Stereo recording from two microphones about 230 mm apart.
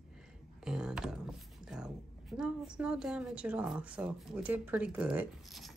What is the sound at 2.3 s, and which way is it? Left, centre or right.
Speech, centre.